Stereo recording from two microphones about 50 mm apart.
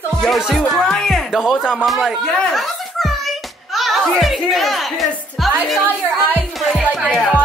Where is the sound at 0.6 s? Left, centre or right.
Centre.